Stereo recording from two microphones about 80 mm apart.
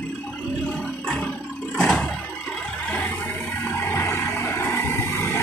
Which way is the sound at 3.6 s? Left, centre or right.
Left.